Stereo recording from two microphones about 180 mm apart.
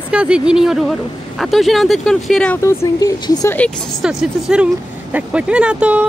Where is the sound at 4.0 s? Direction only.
5° right (ahead or behind).